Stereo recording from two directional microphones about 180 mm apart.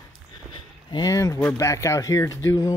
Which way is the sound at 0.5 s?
25° left (ahead or behind).